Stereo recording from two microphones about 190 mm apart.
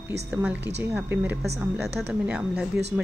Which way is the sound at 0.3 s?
5° right (ahead or behind).